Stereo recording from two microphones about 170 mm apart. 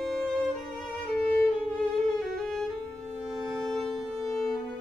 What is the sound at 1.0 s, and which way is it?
Violin, 5° left (ahead or behind).